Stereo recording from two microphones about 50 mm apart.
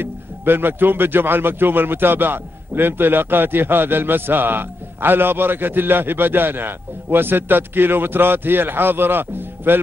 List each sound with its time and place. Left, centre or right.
0.0 s speech: right